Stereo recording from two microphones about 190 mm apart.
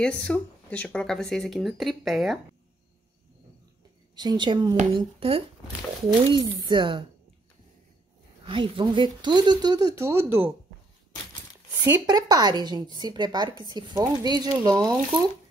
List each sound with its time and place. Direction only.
0.0 s speech: 5° left (ahead or behind)
4.1 s a woman's voice: 20° right (ahead or behind)
8.5 s a woman's voice: 25° right (ahead or behind)
11.8 s a woman's voice: 20° right (ahead or behind)